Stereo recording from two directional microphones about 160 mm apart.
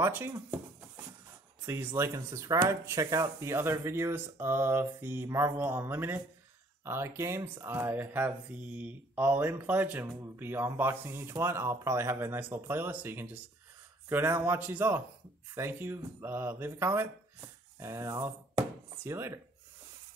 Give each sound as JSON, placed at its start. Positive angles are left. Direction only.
{"t": 0.0, "sound": "speech", "side_deg": -15}
{"t": 1.7, "sound": "speech", "side_deg": -15}